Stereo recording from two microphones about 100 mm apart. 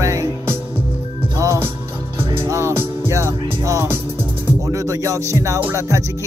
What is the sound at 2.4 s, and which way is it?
Music, 30° right (ahead or behind).